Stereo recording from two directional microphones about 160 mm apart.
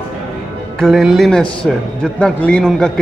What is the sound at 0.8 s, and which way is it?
A man's voice, centre (ahead or behind).